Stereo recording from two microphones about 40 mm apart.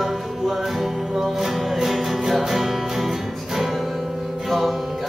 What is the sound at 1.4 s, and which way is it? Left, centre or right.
Music, centre.